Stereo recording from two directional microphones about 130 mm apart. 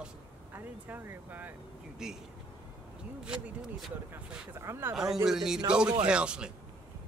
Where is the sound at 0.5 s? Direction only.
15° right (ahead or behind).